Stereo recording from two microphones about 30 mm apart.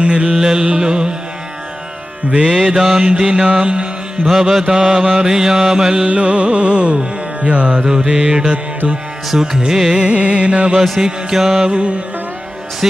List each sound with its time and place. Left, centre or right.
0.0 s music: right
0.4 s mantra: right
2.5 s mantra: centre
3.4 s music: right
4.4 s mantra: centre
4.6 s mantra: right
6.0 s music: right
7.8 s mantra: right
8.1 s music: right
9.3 s mantra: right
9.9 s music: right
11.0 s mantra: right
11.7 s music: right